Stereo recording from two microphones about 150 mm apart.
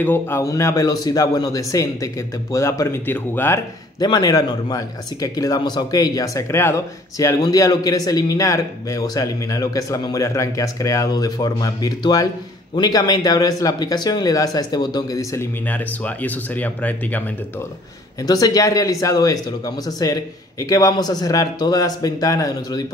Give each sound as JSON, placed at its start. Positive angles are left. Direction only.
{"t": 0.0, "sound": "a man's voice", "side_deg": 15}
{"t": 18.2, "sound": "a man's voice", "side_deg": 25}